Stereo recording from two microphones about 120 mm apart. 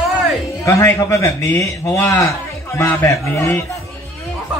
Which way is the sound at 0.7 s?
25° left (ahead or behind).